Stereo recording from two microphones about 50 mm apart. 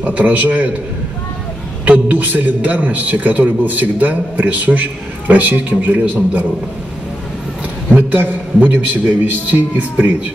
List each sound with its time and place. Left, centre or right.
0.0 s a man's voice: right
1.9 s a man's voice: right
7.9 s a man's voice: right